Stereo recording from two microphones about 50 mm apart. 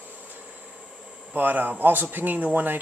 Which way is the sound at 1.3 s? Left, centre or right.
Right.